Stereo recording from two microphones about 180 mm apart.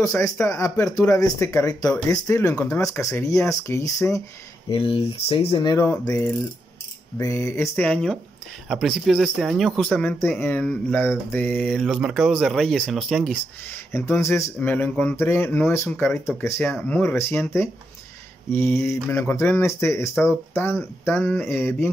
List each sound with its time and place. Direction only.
0.0 s speech: 15° left (ahead or behind)
4.6 s speech: 30° left (ahead or behind); by 13.4 s centre (ahead or behind)
13.9 s speech: 15° left (ahead or behind)